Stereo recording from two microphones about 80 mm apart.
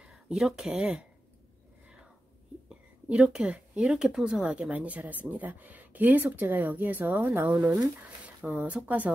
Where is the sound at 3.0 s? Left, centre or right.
Centre.